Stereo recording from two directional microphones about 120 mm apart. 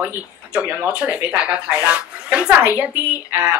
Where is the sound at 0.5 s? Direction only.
10° right (ahead or behind).